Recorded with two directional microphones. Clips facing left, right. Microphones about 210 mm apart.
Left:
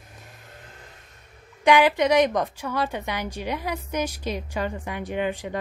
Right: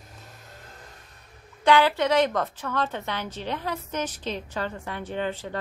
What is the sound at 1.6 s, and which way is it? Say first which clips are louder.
A woman's voice: left 2 dB; 15° left (ahead or behind).